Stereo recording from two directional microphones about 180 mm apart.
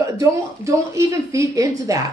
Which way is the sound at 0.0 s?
15° right (ahead or behind).